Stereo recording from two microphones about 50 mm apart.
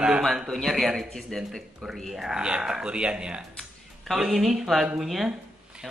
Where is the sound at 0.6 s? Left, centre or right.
Centre.